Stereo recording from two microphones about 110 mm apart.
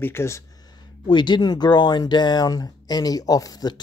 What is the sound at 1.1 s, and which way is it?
Speech, 45° left (ahead or behind).